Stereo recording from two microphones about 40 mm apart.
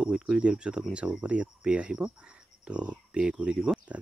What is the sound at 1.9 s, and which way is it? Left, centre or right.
Speech, centre.